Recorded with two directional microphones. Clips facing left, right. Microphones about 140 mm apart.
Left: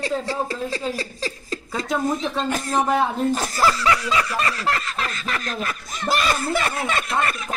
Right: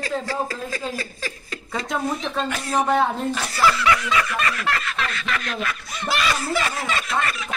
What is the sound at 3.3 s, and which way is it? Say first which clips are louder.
Speech: left 1 dB; 45° left (ahead or behind).